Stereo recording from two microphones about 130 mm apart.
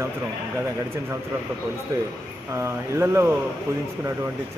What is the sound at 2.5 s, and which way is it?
Speech, 20° right (ahead or behind).